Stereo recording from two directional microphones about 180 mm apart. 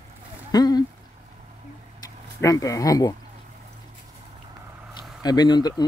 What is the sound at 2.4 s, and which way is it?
Speech, 15° left (ahead or behind).